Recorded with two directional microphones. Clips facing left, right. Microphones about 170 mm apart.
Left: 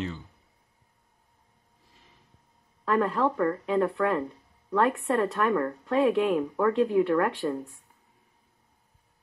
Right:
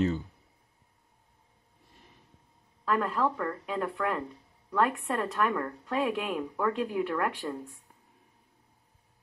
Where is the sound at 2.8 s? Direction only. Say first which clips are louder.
Left 3 dB; centre (ahead or behind).